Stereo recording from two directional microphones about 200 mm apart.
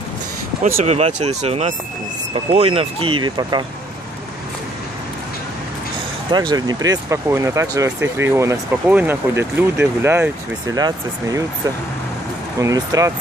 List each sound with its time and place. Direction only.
0.8 s speech: 35° right (ahead or behind)
6.3 s speech: 20° right (ahead or behind)
12.5 s speech: 15° right (ahead or behind)